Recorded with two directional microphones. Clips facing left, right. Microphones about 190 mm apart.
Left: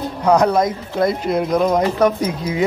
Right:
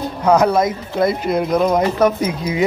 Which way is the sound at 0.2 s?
5° right (ahead or behind).